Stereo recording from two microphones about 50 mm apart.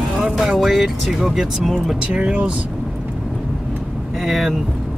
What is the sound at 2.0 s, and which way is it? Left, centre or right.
Speech, right.